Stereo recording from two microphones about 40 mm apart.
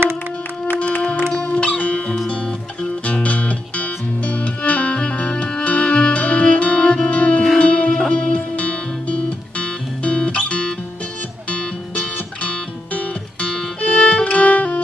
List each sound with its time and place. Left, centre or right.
0.7 s music: left
3.1 s music: left
8.5 s music: left